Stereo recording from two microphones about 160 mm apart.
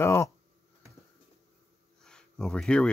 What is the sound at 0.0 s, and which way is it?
Speech, 15° left (ahead or behind).